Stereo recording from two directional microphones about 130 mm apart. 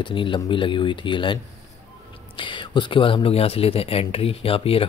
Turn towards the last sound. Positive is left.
turn(degrees=45)  # may be behind; listen again after turning